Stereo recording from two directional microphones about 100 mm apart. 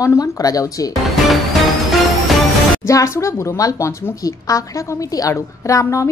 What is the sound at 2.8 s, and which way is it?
Speech, 30° left (ahead or behind).